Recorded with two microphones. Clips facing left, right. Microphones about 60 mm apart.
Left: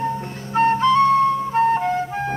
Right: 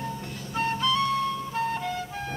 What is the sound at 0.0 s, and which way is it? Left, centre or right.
Flute, left.